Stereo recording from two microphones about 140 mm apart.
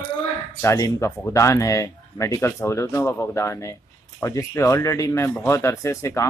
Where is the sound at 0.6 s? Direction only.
20° left (ahead or behind).